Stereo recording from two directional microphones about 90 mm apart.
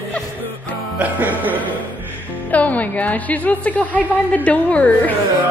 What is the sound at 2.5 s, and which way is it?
A woman's voice, 15° left (ahead or behind).